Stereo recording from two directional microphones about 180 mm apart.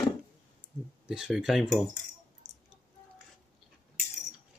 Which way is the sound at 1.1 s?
5° right (ahead or behind).